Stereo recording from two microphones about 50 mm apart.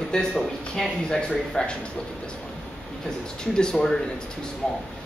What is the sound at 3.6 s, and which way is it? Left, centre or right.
Speech, centre.